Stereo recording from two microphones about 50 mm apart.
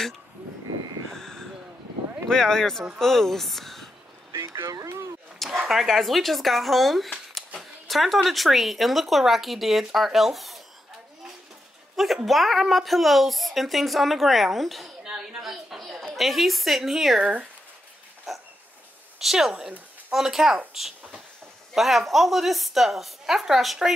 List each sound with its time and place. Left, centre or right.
1.1 s a sound: centre
2.2 s speech: centre
4.3 s a sound: right
5.7 s speech: centre
12.3 s speech: centre
15.0 s a sound: centre
16.2 s speech: centre
17.2 s speech: right
18.3 s dog: centre
19.1 s speech: centre